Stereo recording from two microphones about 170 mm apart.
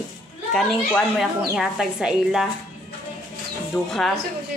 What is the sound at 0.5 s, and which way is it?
Speech, centre (ahead or behind).